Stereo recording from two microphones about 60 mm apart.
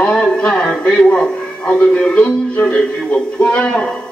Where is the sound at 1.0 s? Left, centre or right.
Centre.